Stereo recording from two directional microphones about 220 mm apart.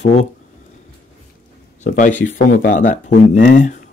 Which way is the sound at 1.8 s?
35° left (ahead or behind).